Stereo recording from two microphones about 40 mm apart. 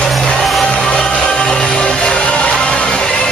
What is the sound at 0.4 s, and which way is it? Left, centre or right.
Music, centre.